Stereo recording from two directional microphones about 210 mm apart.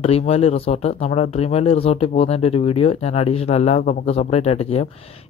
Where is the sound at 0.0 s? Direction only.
30° left (ahead or behind).